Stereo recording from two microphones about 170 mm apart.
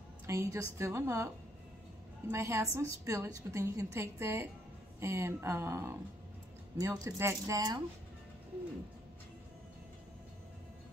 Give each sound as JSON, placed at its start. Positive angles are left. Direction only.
{"t": 0.3, "sound": "a woman's voice", "side_deg": -15}
{"t": 2.3, "sound": "a woman's voice", "side_deg": -15}